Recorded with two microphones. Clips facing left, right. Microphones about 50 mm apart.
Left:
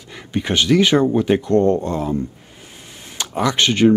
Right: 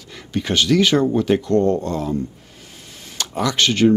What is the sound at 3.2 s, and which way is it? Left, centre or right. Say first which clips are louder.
Speech: left 1 dB; left.